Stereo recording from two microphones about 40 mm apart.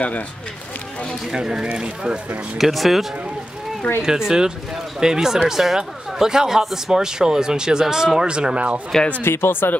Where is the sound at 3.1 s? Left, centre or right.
Right.